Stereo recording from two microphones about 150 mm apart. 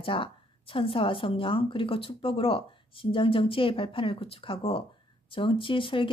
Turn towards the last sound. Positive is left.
turn(degrees=35)  # may be behind; listen again after turning